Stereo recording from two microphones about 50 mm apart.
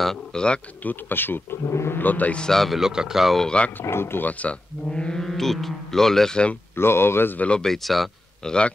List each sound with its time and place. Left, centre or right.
0.0 s speech: centre
0.8 s speech: left
1.7 s speech: left
2.0 s speech: left
2.5 s speech: centre
2.8 s speech: centre
3.8 s speech: left
4.2 s speech: left
4.8 s mantra: centre
5.2 s speech: centre
6.7 s speech: left
7.3 s speech: left
7.6 s speech: centre
8.5 s speech: centre